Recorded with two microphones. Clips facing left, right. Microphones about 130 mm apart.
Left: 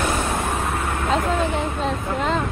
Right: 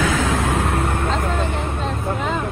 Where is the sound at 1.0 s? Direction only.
Centre (ahead or behind).